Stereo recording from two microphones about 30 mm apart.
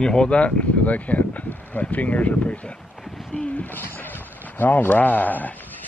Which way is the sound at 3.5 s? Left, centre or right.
Left.